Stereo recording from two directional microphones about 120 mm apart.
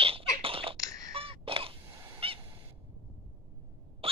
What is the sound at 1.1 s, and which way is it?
Bird, 50° right (ahead or behind).